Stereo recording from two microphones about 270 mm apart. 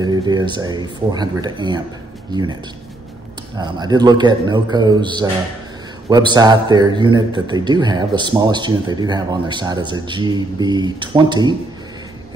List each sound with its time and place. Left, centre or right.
0.0 s a man's voice: centre
3.5 s a man's voice: centre